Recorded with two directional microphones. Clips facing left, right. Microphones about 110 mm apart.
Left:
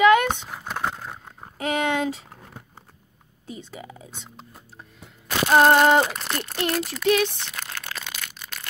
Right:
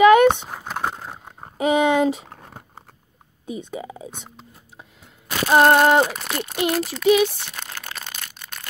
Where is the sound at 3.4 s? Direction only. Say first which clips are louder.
Right 7 dB; 20° right (ahead or behind).